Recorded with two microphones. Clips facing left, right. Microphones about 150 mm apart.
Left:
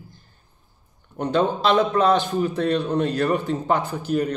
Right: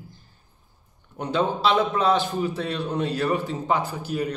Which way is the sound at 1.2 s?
50° left (ahead or behind).